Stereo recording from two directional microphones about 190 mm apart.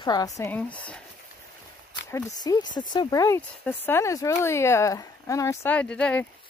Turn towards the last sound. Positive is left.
turn(degrees=5)  # may be behind; listen again after turning